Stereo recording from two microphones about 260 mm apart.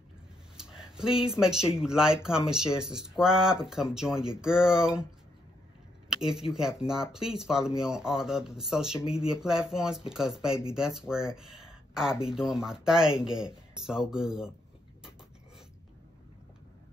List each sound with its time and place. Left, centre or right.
0.6 s speech: centre
6.0 s a sound: centre
6.8 s speech: centre